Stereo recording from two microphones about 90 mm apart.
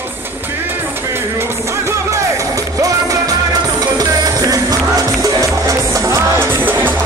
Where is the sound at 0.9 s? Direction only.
25° right (ahead or behind).